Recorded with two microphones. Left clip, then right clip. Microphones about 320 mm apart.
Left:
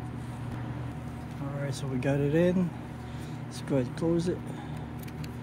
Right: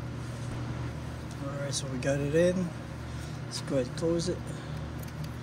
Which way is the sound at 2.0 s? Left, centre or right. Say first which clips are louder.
Even; left.